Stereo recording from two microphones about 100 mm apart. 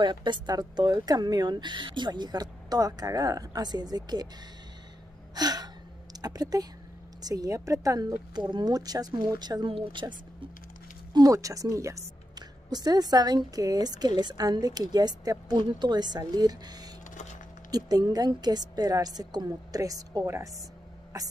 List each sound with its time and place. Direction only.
0.0 s speech: 50° right (ahead or behind)
5.3 s gasp: 40° right (ahead or behind)
6.2 s speech: 40° right (ahead or behind); by 10.5 s 55° right (ahead or behind)
11.1 s a woman's voice: 35° right (ahead or behind)